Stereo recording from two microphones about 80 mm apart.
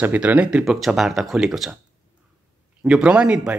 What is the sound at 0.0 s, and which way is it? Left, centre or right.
Speech, centre.